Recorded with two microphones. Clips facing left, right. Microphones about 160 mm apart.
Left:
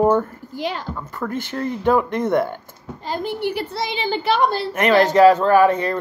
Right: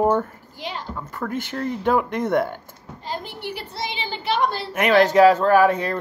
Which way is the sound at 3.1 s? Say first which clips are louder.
Left 8 dB; 50° left (ahead or behind).